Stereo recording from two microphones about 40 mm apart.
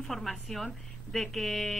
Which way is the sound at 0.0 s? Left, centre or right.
Centre.